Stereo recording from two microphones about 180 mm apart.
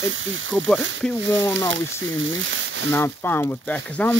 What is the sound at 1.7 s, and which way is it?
Speech, 90° right.